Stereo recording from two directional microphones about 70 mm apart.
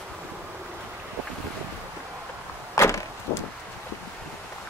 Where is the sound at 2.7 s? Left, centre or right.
Left.